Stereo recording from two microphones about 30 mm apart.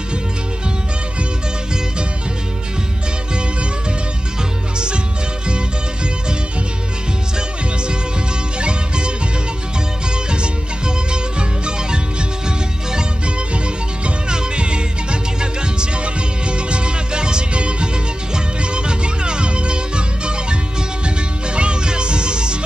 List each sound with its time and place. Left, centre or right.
4.7 s music: right
8.5 s music: right
11.1 s music: right
14.3 s music: right
21.5 s music: right